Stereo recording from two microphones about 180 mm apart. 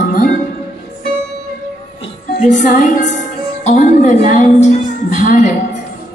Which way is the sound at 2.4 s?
45° left (ahead or behind).